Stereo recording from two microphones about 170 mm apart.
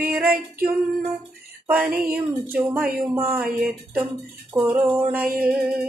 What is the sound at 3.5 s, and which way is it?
Mantra, 55° right (ahead or behind).